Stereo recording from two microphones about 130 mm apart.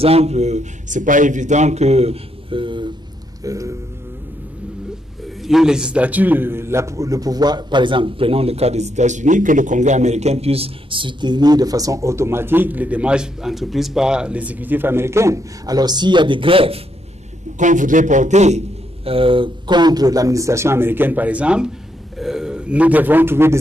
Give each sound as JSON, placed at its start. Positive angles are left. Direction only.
{"t": 0.0, "sound": "a man's voice", "side_deg": -50}
{"t": 3.4, "sound": "a man's voice", "side_deg": -25}
{"t": 5.4, "sound": "a man's voice", "side_deg": -5}
{"t": 17.6, "sound": "a man's voice", "side_deg": -75}
{"t": 19.0, "sound": "a man's voice", "side_deg": -45}